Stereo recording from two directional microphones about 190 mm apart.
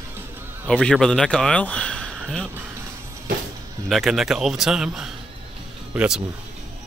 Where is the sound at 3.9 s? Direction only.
Centre (ahead or behind).